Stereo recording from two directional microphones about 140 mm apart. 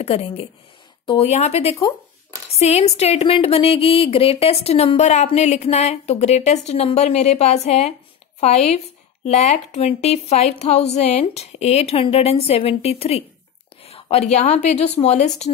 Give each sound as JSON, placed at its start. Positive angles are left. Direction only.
{"t": 0.0, "sound": "speech", "side_deg": 45}